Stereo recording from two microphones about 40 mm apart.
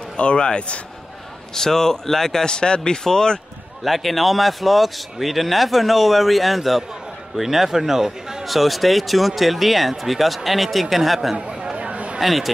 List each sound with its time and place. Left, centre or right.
0.2 s speech: left
1.5 s a man's voice: centre
3.8 s speech: centre
8.5 s speech: centre
11.7 s a sound: right
12.2 s speech: centre